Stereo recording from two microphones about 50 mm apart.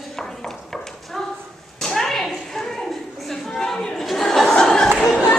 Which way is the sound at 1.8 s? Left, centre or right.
Centre.